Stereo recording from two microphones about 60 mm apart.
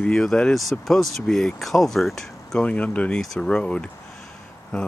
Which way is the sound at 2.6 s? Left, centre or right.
Left.